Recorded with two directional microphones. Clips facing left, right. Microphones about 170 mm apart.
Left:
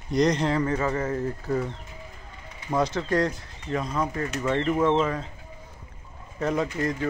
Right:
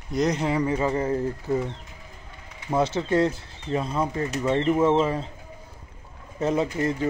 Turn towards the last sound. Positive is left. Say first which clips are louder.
# right 2 dB
turn(degrees=-25)  # may be behind; listen again after turning